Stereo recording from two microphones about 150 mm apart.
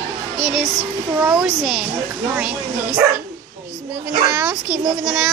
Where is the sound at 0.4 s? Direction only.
5° right (ahead or behind).